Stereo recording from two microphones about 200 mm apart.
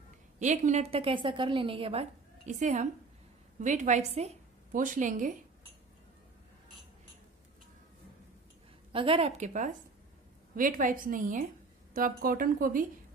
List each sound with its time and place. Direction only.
0.4 s a woman's voice: 35° right (ahead or behind)
8.9 s a woman's voice: 25° right (ahead or behind); by 12.8 s 45° right (ahead or behind)